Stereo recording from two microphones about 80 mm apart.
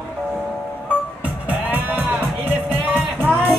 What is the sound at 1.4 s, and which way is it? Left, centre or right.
Music, right.